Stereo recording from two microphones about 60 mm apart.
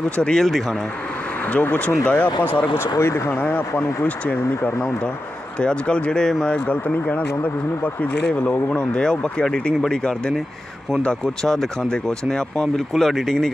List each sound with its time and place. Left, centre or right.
0.1 s speech: centre
1.4 s speech: left
2.8 s speech: left
3.3 s speech: left; by 13.5 s centre